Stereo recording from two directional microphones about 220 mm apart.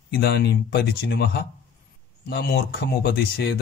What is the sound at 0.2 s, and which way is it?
Speech, 50° left (ahead or behind).